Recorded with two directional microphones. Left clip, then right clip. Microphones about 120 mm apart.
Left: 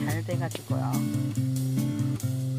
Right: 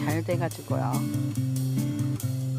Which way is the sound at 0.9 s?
5° right (ahead or behind).